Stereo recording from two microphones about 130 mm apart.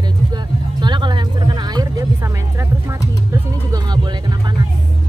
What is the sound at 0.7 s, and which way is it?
Music, 35° right (ahead or behind).